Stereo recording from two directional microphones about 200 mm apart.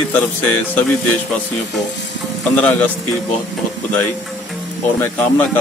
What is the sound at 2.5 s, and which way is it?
Speech, 5° left (ahead or behind).